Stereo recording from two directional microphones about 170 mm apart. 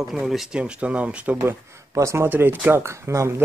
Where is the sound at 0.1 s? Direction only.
Centre (ahead or behind).